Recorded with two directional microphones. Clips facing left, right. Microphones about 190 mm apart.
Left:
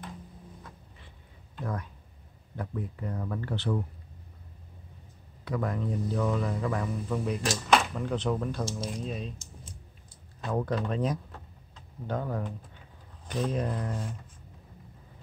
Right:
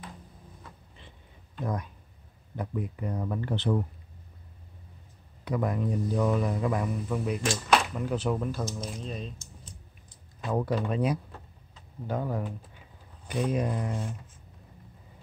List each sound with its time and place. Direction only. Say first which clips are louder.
1.6 s speech: right 3 dB; 15° right (ahead or behind)
5.4 s speech: right 2 dB; 15° right (ahead or behind); by 9.3 s 5° left (ahead or behind)
10.4 s speech: right 1 dB; 10° right (ahead or behind)